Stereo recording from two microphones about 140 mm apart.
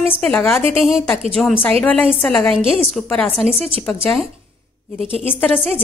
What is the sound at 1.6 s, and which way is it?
Speech, 10° left (ahead or behind).